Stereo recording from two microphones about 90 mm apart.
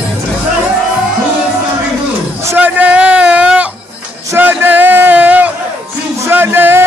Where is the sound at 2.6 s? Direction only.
15° right (ahead or behind).